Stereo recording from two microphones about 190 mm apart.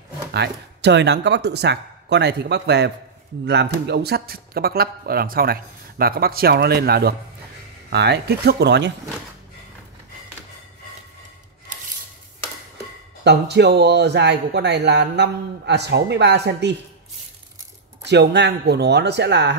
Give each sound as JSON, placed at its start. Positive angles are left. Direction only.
{"t": 0.3, "sound": "speech", "side_deg": -60}
{"t": 13.2, "sound": "speech", "side_deg": -60}
{"t": 18.0, "sound": "speech", "side_deg": -65}